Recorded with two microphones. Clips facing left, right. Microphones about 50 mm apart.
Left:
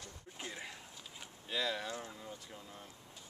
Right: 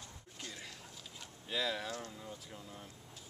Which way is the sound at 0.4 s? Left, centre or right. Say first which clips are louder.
Left 3 dB; centre.